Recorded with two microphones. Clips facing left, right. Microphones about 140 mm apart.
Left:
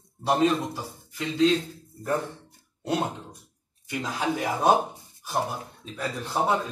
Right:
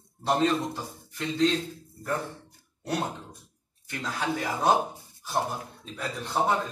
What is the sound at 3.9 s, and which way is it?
Speech, 15° left (ahead or behind).